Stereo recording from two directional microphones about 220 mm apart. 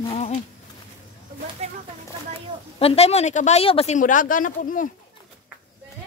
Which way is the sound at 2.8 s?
25° left (ahead or behind).